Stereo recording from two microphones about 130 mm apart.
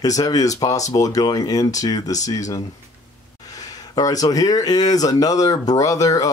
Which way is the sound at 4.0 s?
30° left (ahead or behind).